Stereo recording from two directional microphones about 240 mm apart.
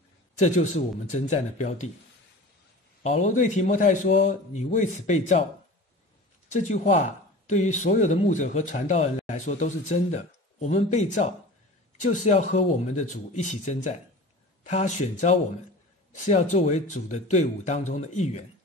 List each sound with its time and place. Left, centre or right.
0.4 s a man's voice: left
3.0 s a man's voice: left
6.5 s a man's voice: left
12.3 s a man's voice: left